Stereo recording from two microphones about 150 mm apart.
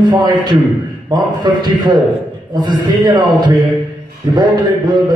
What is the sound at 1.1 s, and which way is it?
Speech, 30° right (ahead or behind).